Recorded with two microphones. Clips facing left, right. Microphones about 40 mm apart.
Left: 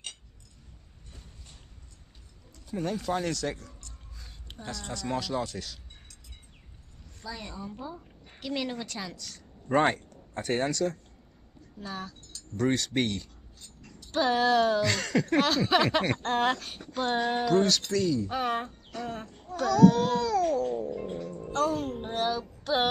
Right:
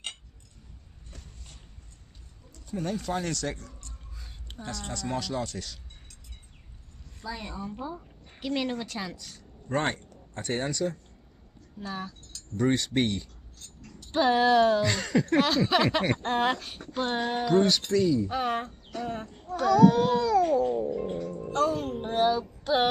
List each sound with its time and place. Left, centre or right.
2.5 s a woman's voice: centre
4.2 s a sound: centre
4.9 s a woman's voice: centre
7.2 s speech: centre
9.4 s a sound: centre
9.9 s a woman's voice: centre
18.3 s speech: centre
20.9 s speech: centre